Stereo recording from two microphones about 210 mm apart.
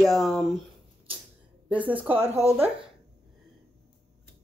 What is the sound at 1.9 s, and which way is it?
Speech, 10° right (ahead or behind).